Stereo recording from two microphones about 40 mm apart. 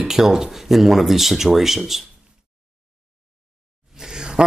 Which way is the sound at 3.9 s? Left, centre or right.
Centre.